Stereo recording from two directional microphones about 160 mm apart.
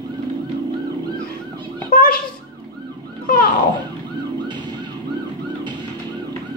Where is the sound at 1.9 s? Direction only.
65° left (ahead or behind).